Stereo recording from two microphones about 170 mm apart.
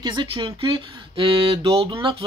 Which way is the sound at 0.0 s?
25° right (ahead or behind).